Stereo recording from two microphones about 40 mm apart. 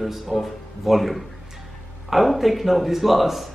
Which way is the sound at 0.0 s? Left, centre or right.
Centre.